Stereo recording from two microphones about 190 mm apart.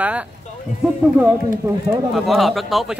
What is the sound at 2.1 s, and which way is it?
Speech, centre (ahead or behind).